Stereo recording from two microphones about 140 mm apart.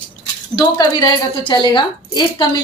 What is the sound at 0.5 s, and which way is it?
A woman's voice, 30° left (ahead or behind).